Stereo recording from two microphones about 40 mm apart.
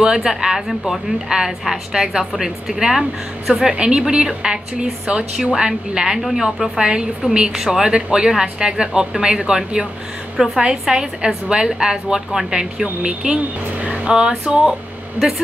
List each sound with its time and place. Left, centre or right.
0.0 s a woman's voice: centre
0.6 s a woman's voice: centre
3.7 s a woman's voice: right; by 6.7 s centre
6.8 s a woman's voice: centre
7.8 s speech: right
10.3 s a woman's voice: centre
10.6 s a woman's voice: centre
15.1 s a woman's voice: centre